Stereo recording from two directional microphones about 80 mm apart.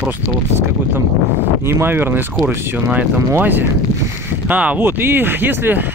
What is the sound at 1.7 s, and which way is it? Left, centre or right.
Speech, right.